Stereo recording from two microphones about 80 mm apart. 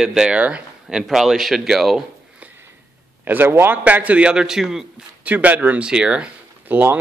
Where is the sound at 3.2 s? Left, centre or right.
Right; by 4.8 s centre.